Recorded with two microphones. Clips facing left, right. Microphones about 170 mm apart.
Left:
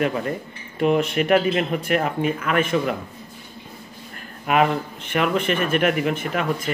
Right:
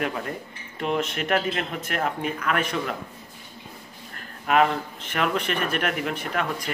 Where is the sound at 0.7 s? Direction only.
5° left (ahead or behind).